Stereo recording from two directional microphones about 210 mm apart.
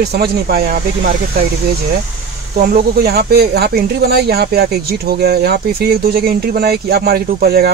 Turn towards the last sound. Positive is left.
turn(degrees=-45)  # may be behind; listen again after turning